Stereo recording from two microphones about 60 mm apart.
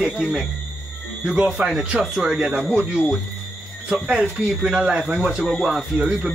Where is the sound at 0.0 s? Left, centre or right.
Centre.